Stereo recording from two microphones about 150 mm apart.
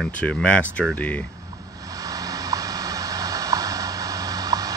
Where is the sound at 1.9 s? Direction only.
25° right (ahead or behind).